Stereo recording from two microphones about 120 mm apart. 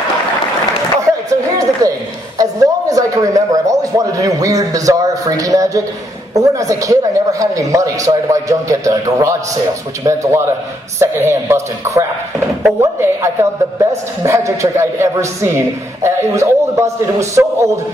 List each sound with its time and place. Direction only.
1.3 s a sound: 25° right (ahead or behind)
6.3 s a man's voice: 30° right (ahead or behind)
13.0 s a man's voice: 25° right (ahead or behind)